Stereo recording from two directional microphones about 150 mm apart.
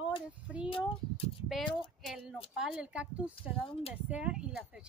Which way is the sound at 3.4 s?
35° left (ahead or behind).